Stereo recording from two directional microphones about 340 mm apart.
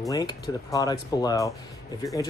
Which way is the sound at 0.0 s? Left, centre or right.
Centre.